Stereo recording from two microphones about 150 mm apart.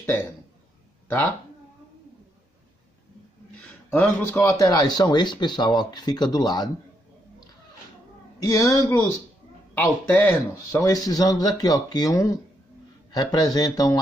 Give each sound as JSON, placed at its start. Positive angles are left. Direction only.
{"t": 3.6, "sound": "a sound", "side_deg": 10}
{"t": 4.4, "sound": "speech", "side_deg": 20}
{"t": 8.4, "sound": "speech", "side_deg": 20}